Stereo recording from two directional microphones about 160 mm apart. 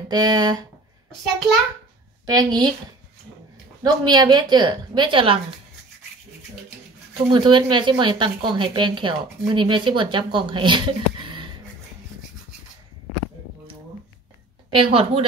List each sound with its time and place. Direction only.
0.1 s speech: 25° right (ahead or behind)
2.2 s speech: 25° right (ahead or behind)
3.8 s speech: 25° right (ahead or behind)
7.2 s speech: 30° right (ahead or behind)
14.7 s a woman's voice: 35° right (ahead or behind)